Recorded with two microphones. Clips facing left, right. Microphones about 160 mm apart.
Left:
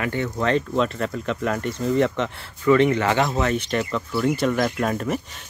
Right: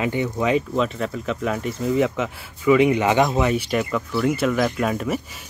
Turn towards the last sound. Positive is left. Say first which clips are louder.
# right 1 dB
turn(degrees=-5)  # may be behind; listen again after turning